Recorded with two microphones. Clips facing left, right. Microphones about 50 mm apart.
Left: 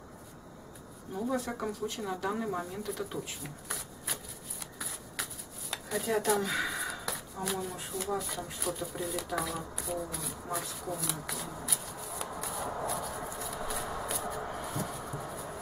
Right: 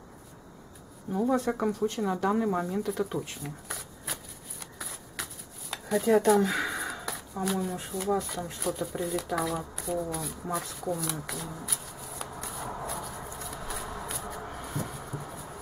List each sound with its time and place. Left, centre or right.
1.7 s speech: centre
2.0 s shuffling cards: centre